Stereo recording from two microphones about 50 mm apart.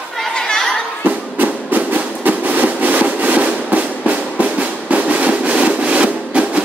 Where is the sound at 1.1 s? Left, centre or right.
Right.